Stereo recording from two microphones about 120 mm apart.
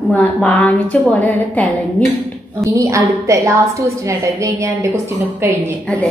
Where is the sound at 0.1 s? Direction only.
10° left (ahead or behind).